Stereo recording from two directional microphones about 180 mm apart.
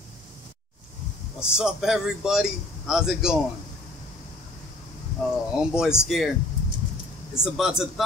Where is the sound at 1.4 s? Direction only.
5° right (ahead or behind).